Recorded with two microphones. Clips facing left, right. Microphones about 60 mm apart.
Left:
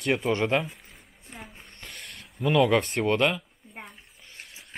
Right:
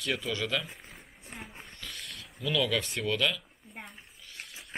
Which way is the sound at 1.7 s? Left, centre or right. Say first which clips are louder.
Even; left.